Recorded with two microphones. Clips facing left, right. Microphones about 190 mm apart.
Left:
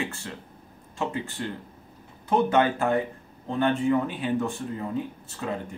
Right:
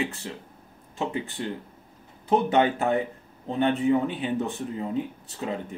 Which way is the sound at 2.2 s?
20° right (ahead or behind).